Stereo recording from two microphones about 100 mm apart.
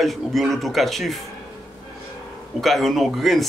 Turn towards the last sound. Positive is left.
turn(degrees=0)  # may be behind; listen again after turning